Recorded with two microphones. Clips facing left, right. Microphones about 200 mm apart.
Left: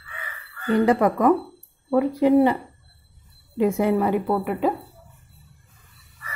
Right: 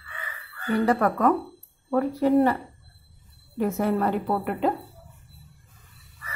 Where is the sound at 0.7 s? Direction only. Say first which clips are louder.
Left 4 dB; 20° left (ahead or behind).